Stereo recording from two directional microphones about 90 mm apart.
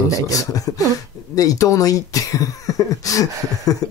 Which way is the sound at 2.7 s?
40° left (ahead or behind).